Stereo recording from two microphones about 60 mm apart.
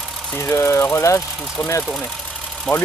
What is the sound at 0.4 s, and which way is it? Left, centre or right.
Speech, left.